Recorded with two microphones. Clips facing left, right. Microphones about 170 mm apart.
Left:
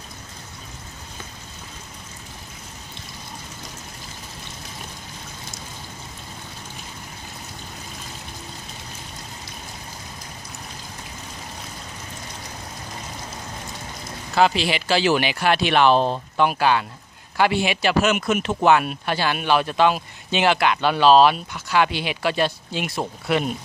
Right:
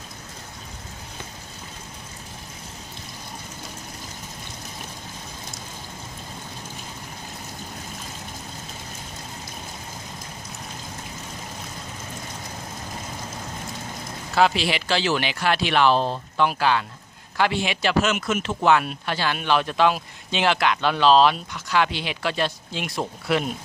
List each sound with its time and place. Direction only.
14.3 s speech: centre (ahead or behind)